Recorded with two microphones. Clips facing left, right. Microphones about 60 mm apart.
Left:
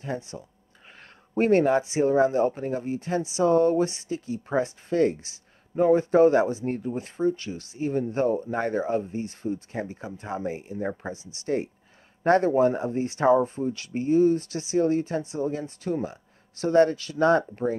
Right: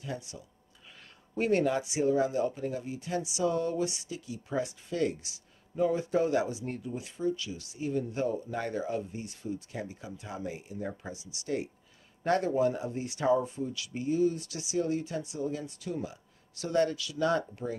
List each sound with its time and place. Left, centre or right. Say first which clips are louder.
0.0 s speech: left 7 dB; left